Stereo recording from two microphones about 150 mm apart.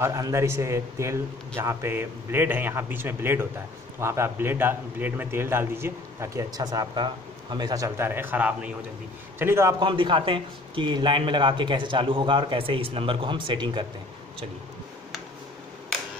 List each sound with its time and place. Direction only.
0.0 s a man's voice: 20° right (ahead or behind)
9.8 s a man's voice: 30° right (ahead or behind)